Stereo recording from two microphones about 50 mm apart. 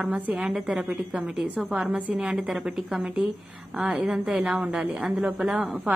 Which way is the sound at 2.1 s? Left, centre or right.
Centre.